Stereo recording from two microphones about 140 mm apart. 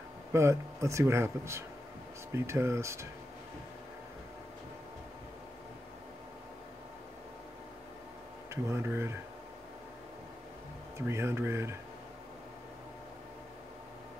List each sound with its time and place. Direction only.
0.3 s speech: 20° right (ahead or behind)
8.5 s speech: 20° right (ahead or behind)
11.0 s speech: 20° right (ahead or behind)